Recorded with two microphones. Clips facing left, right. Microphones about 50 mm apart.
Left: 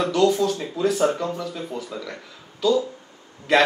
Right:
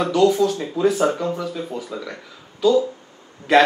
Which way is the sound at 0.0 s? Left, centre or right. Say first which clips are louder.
Right 3 dB; centre.